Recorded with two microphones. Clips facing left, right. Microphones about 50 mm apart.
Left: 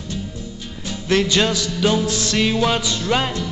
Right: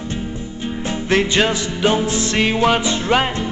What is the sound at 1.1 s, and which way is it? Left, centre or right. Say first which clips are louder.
Music: right 1 dB; right.